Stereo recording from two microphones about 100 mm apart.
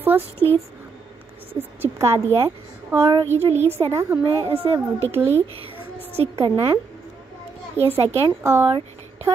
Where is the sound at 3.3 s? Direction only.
90° right.